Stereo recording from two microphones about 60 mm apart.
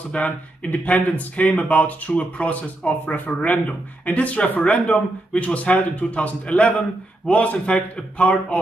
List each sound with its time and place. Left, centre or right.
0.1 s speech: left